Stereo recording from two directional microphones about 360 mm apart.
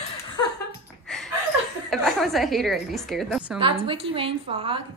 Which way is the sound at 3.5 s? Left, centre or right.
Centre.